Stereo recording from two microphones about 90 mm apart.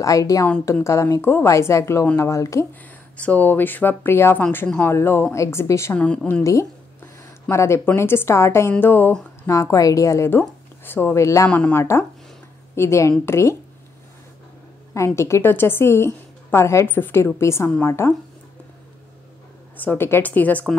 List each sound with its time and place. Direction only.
0.0 s a woman's voice: 40° left (ahead or behind)
3.2 s a woman's voice: 15° left (ahead or behind)
5.9 s a woman's voice: 10° left (ahead or behind)
6.4 s a woman's voice: 35° left (ahead or behind)
9.4 s a woman's voice: 35° left (ahead or behind)
11.4 s a woman's voice: 10° left (ahead or behind)
11.7 s a woman's voice: 25° left (ahead or behind)
15.0 s a woman's voice: 30° left (ahead or behind)
19.8 s a woman's voice: 20° left (ahead or behind)